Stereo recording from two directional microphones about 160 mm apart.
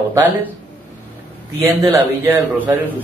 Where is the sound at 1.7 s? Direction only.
20° right (ahead or behind).